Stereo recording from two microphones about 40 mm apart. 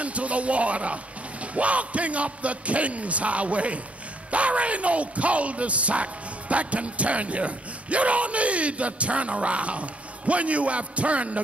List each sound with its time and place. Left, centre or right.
0.0 s speech: right